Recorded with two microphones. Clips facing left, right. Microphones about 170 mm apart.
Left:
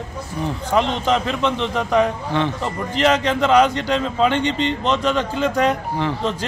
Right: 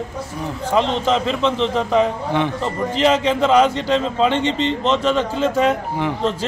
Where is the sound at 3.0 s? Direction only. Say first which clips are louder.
Right 1 dB; 5° right (ahead or behind).